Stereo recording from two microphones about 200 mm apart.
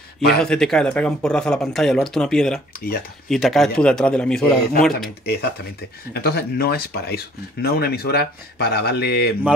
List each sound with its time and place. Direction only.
0.4 s speech: 5° left (ahead or behind)
5.2 s speech: 50° left (ahead or behind)